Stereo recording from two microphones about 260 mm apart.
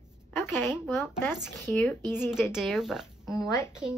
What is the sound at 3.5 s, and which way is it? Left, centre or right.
Speech, centre.